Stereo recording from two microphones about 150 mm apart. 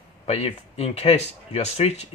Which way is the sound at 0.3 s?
45° left (ahead or behind).